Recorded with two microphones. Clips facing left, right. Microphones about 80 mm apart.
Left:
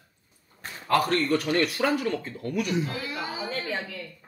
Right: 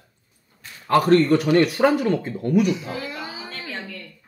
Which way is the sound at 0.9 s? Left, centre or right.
Right.